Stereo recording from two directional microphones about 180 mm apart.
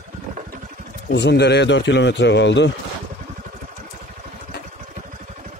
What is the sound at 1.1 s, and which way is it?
A man's voice, 70° left (ahead or behind).